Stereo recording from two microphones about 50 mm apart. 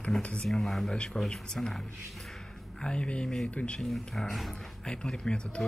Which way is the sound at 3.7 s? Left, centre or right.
Centre.